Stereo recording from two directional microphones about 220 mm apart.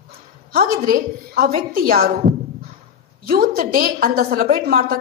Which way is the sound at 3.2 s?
40° right (ahead or behind).